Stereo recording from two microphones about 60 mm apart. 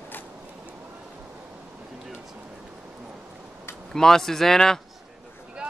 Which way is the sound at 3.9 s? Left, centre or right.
Centre.